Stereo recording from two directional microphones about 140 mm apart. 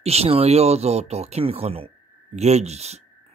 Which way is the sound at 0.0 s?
45° right (ahead or behind).